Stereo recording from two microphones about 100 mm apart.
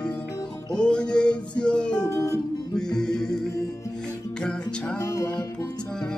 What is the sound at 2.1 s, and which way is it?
Music, 30° left (ahead or behind).